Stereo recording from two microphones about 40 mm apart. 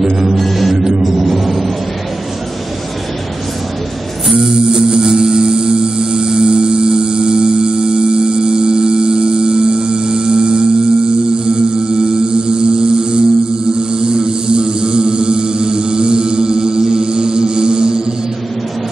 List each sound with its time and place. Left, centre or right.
0.0 s music: centre
0.4 s music: centre
1.0 s a sound: centre
4.4 s music: centre